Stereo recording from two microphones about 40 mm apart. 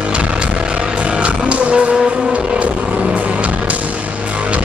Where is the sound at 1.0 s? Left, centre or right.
Right.